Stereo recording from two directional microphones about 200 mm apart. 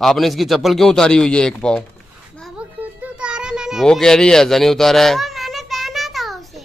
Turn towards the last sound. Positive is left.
turn(degrees=0)  # may be behind; listen again after turning